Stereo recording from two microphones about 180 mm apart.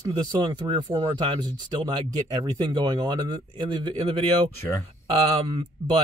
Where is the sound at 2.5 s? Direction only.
25° right (ahead or behind).